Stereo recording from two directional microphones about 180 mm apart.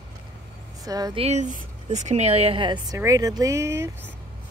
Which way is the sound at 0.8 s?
20° right (ahead or behind).